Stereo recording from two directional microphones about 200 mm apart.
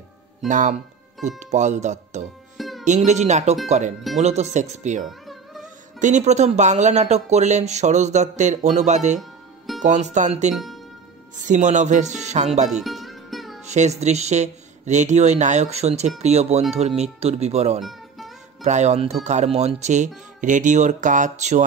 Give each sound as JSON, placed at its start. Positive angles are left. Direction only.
{"t": 0.5, "sound": "speech", "side_deg": -40}
{"t": 2.5, "sound": "music", "side_deg": 0}
{"t": 3.1, "sound": "speech", "side_deg": -35}
{"t": 5.2, "sound": "music", "side_deg": 0}
{"t": 5.9, "sound": "speech", "side_deg": -35}
{"t": 10.5, "sound": "speech", "side_deg": 0}
{"t": 11.4, "sound": "speech", "side_deg": -35}
{"t": 12.8, "sound": "music", "side_deg": 0}
{"t": 13.7, "sound": "speech", "side_deg": -35}
{"t": 17.8, "sound": "music", "side_deg": 0}
{"t": 18.6, "sound": "speech", "side_deg": -35}